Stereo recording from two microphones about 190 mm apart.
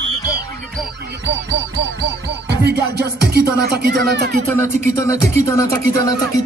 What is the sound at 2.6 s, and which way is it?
Music, 60° right (ahead or behind).